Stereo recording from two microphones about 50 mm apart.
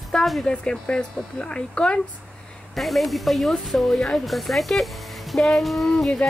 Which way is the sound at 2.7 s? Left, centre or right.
Centre.